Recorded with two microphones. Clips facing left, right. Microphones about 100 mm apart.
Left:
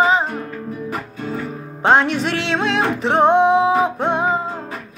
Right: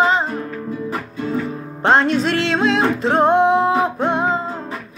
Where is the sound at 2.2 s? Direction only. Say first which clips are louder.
Right 3 dB; 70° left (ahead or behind).